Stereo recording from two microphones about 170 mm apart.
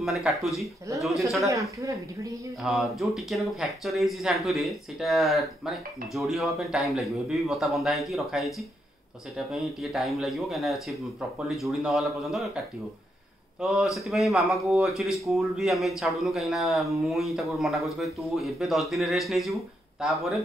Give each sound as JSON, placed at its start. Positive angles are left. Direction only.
{"t": 0.0, "sound": "speech", "side_deg": 0}
{"t": 1.5, "sound": "a woman's voice", "side_deg": -20}
{"t": 2.6, "sound": "speech", "side_deg": 0}
{"t": 13.6, "sound": "speech", "side_deg": 0}